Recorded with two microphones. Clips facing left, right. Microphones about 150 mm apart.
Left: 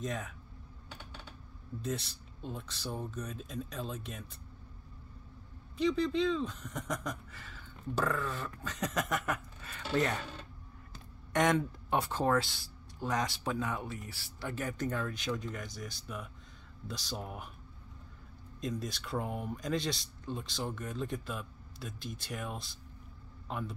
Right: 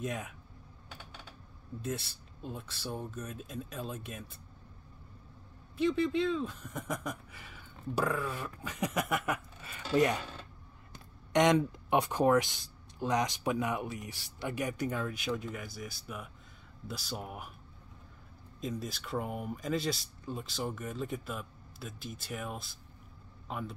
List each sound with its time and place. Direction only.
0.0 s speech: 10° right (ahead or behind)
1.8 s speech: 5° right (ahead or behind)
5.8 s speech: 5° right (ahead or behind)
18.6 s speech: 5° right (ahead or behind)